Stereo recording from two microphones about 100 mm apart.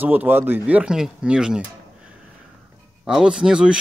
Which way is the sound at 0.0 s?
20° right (ahead or behind).